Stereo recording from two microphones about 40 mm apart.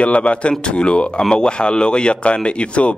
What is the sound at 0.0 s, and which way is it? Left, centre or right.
Speech, left.